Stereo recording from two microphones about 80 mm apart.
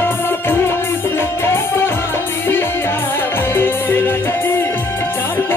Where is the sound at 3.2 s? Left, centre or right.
Left.